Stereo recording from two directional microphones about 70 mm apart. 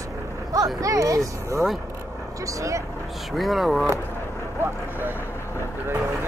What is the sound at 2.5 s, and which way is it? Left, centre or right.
Speech, right.